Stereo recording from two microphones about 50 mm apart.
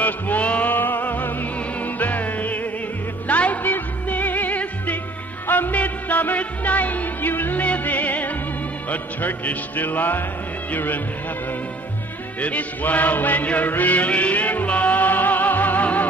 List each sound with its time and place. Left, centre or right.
0.0 s music: left
12.4 s music: left